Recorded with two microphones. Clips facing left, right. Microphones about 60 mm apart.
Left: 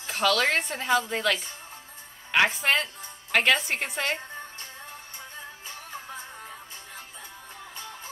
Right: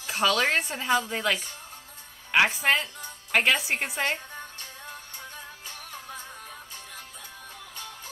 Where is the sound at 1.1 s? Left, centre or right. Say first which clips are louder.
Left 1 dB; right.